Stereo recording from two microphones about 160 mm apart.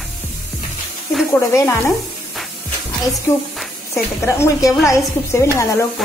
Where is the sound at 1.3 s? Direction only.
15° left (ahead or behind).